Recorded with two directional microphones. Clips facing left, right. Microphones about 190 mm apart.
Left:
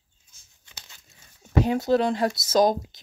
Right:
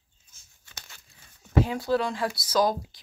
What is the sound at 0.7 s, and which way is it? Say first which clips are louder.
Tearing: right 1 dB; 20° left (ahead or behind).